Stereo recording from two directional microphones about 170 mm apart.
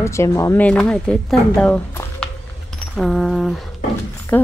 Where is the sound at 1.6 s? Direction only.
10° left (ahead or behind).